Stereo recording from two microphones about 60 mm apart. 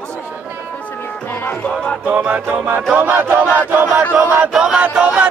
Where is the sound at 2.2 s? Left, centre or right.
Right.